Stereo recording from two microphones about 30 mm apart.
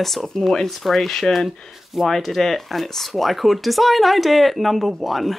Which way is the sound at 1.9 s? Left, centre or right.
Centre.